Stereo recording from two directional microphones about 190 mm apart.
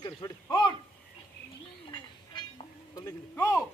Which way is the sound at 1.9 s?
25° left (ahead or behind).